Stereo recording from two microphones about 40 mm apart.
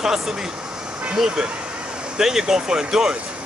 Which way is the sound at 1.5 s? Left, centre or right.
Right.